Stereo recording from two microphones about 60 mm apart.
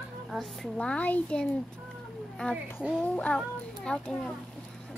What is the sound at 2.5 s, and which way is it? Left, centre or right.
Speech, centre.